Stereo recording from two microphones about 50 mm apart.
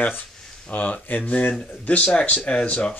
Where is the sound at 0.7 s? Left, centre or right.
Left.